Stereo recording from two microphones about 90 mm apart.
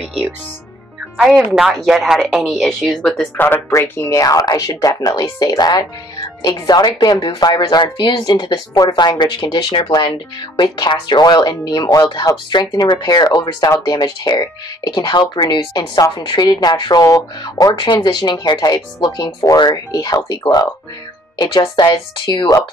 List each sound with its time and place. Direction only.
1.1 s a woman's voice: 10° right (ahead or behind)
3.0 s speech: 15° left (ahead or behind)
4.2 s speech: 45° left (ahead or behind)
17.0 s speech: 40° left (ahead or behind)
17.7 s speech: 60° left (ahead or behind)
19.9 s speech: 40° left (ahead or behind)
21.5 s speech: 55° left (ahead or behind)
21.9 s speech: 65° left (ahead or behind)